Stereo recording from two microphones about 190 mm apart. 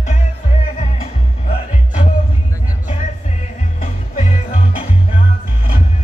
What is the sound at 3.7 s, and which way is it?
Music, 40° left (ahead or behind).